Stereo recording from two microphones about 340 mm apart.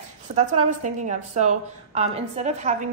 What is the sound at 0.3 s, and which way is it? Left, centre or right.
A woman's voice, centre.